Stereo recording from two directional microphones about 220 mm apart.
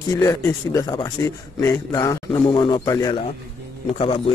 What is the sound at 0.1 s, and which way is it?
A man's voice, 15° left (ahead or behind).